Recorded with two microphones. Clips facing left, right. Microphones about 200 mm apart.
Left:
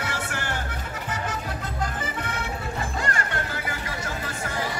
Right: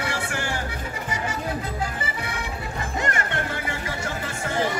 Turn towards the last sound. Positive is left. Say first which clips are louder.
# right 4 dB
turn(degrees=-25)  # may be behind; listen again after turning